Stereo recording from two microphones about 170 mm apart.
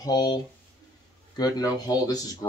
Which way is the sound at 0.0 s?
25° left (ahead or behind).